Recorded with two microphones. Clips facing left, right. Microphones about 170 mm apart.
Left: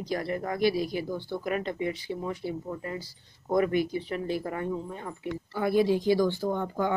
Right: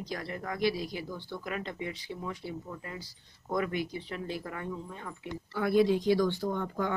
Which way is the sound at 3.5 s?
50° left (ahead or behind).